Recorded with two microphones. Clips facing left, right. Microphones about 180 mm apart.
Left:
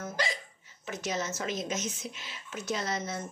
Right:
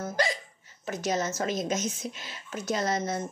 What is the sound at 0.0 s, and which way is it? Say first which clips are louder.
Hiccup: right 5 dB; 45° right (ahead or behind).